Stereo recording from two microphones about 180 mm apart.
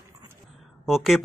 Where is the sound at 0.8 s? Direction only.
Centre (ahead or behind).